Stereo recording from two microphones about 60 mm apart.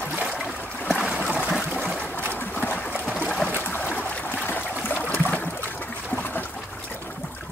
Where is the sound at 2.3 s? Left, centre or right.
Left.